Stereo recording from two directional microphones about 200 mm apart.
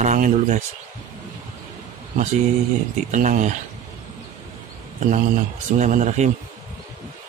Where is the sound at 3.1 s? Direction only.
40° right (ahead or behind).